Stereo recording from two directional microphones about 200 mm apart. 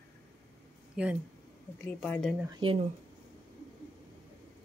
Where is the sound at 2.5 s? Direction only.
25° right (ahead or behind).